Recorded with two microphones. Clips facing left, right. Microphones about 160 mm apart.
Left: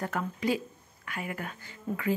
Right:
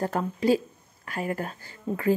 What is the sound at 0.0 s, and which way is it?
Speech, 35° right (ahead or behind).